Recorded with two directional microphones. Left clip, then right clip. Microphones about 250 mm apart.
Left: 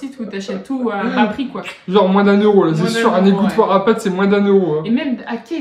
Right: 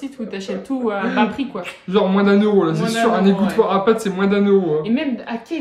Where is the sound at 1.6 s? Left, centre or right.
Centre.